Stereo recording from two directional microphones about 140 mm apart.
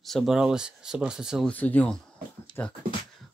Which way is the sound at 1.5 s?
10° left (ahead or behind).